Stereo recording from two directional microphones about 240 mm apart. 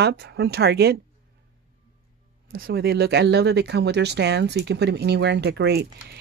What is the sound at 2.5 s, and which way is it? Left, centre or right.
Speech, right.